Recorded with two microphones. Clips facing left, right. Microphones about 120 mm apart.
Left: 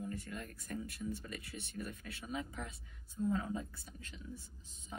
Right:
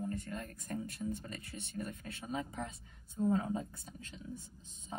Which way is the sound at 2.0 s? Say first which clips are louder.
Right 2 dB; 35° right (ahead or behind).